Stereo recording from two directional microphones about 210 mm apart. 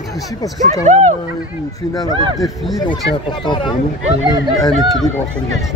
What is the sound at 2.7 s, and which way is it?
Speech, 20° left (ahead or behind).